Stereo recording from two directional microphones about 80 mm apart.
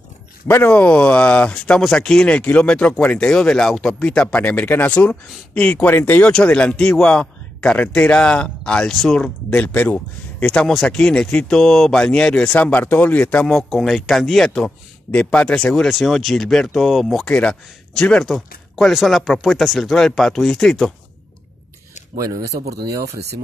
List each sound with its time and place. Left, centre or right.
0.7 s speech: centre
3.3 s speech: centre
9.5 s speech: centre
13.5 s speech: centre
15.0 s speech: centre
15.7 s speech: centre
22.1 s speech: right